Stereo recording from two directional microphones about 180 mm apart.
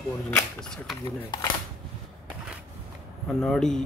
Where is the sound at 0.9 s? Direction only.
20° left (ahead or behind).